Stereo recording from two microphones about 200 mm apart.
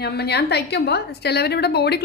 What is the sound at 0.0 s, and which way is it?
A woman's voice, 55° left (ahead or behind).